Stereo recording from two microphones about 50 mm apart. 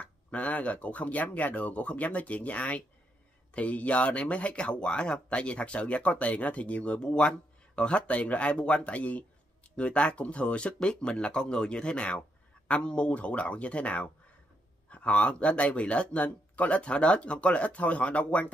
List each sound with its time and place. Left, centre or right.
0.0 s speech: left